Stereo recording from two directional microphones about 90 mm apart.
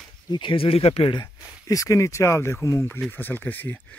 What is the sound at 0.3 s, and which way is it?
Speech, 70° left (ahead or behind).